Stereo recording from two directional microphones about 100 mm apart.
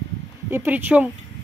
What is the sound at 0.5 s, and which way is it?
Speech, 20° right (ahead or behind).